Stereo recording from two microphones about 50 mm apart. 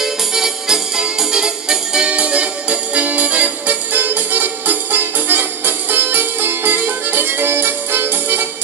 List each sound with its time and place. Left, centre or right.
0.0 s music: centre; by 8.5 s right